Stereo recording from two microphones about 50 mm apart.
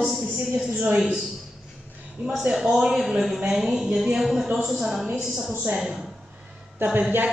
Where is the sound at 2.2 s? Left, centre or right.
Centre.